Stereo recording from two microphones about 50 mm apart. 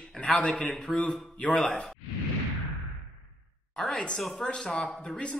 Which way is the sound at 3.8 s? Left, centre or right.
Centre.